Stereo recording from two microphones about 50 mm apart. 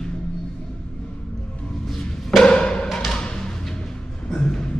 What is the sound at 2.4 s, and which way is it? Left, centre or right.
Music, centre.